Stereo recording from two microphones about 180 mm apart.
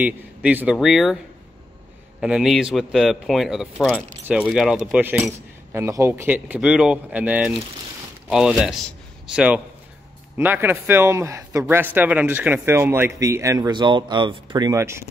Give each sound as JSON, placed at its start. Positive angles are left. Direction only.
{"t": 0.0, "sound": "speech", "side_deg": -10}
{"t": 2.1, "sound": "a man's voice", "side_deg": -5}